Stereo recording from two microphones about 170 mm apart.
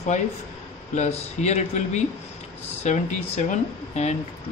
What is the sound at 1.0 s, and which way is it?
A man's voice, 40° left (ahead or behind).